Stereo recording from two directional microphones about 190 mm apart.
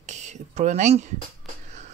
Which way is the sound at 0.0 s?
40° right (ahead or behind).